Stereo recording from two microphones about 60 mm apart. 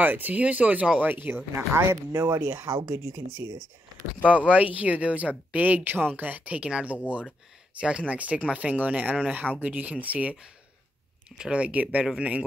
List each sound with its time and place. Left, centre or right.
0.0 s speech: right
2.2 s speech: right
2.5 s speech: right
4.5 s speech: right
8.1 s speech: right
11.3 s speech: centre